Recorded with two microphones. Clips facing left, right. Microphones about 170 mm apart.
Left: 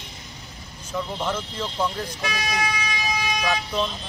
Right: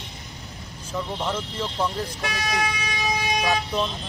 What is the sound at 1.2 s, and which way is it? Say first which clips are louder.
Speech: even; centre (ahead or behind).